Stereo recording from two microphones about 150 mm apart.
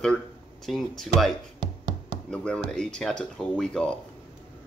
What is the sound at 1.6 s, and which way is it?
Music, 70° right (ahead or behind).